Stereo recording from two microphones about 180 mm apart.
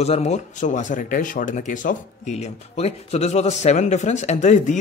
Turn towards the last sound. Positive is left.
turn(degrees=40)  # may be behind; listen again after turning